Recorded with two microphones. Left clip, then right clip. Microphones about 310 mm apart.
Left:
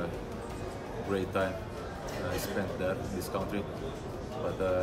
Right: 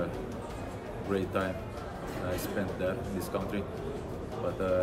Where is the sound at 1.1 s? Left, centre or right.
Centre.